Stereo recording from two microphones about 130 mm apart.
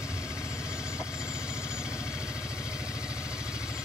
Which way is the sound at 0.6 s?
5° right (ahead or behind).